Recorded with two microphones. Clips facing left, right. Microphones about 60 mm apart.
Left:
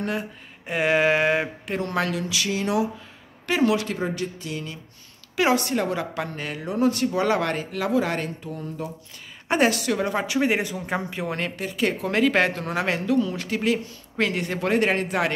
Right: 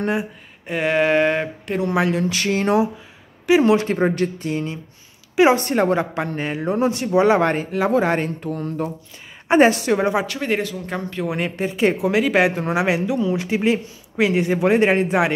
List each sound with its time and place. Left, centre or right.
0.7 s speech: centre
1.9 s speech: centre
2.1 s a sound: right
3.6 s speech: right
4.5 s speech: right
5.3 s a woman's voice: right
5.6 s speech: right
8.4 s a sound: right
9.5 s speech: right
10.2 s speech: centre
11.2 s speech: centre
11.5 s speech: right
12.1 s speech: centre